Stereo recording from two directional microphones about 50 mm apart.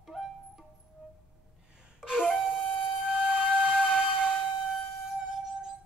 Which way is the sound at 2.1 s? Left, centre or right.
Centre.